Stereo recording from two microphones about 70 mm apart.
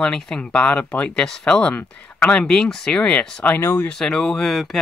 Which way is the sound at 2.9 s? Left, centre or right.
Centre.